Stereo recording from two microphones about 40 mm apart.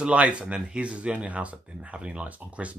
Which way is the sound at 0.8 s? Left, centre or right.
Right.